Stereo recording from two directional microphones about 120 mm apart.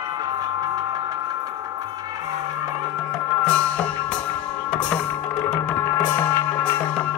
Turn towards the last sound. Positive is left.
turn(degrees=15)  # may be behind; listen again after turning